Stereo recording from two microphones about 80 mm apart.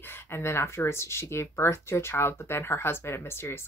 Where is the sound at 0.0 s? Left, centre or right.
Left.